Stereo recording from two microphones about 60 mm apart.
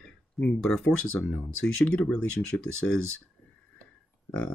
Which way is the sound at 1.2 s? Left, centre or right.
Left.